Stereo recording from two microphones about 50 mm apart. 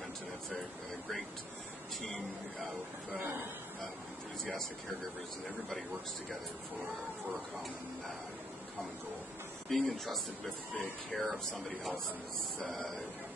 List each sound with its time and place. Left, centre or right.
2.0 s speech: centre
3.2 s speech: right
9.7 s speech: centre